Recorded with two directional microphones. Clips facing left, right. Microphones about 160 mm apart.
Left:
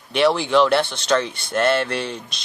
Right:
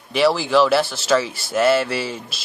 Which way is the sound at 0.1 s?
Centre (ahead or behind).